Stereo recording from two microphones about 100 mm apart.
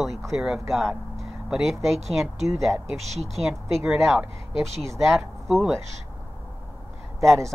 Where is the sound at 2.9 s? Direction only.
90° right.